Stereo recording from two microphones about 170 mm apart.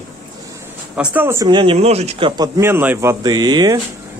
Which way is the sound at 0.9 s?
10° right (ahead or behind).